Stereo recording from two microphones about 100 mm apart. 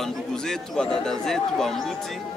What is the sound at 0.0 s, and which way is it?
Speech, 5° left (ahead or behind).